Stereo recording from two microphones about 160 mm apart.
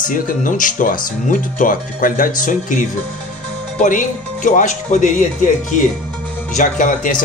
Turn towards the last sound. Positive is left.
turn(degrees=55)  # may be behind; listen again after turning